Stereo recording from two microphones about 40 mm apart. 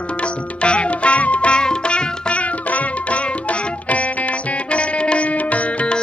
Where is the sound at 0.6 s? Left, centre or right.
Left.